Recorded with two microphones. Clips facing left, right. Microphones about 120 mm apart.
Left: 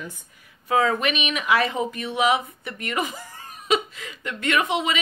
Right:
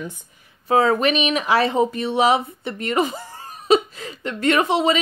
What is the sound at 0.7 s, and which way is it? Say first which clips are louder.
Speech: right 4 dB; 35° right (ahead or behind).